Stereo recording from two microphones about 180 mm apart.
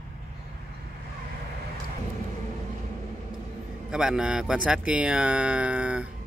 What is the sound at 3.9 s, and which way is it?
Speech, 5° right (ahead or behind).